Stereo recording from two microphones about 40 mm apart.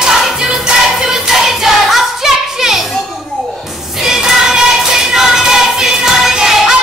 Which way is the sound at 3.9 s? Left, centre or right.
Centre.